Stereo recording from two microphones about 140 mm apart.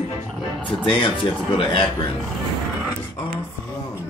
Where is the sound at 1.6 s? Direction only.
40° left (ahead or behind).